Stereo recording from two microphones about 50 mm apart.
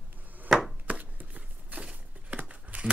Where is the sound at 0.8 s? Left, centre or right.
Right.